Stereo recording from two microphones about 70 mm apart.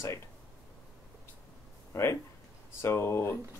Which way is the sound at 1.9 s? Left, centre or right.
Left.